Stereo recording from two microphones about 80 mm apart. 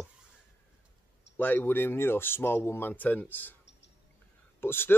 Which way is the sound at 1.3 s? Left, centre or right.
Left.